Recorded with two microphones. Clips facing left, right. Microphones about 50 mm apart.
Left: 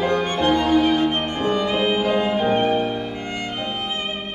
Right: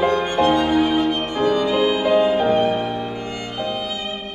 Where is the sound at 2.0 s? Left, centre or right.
Centre.